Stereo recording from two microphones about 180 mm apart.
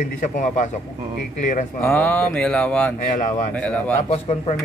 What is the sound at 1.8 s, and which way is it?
Mantra, 10° left (ahead or behind).